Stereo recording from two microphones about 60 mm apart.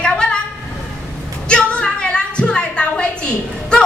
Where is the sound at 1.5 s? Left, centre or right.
Centre.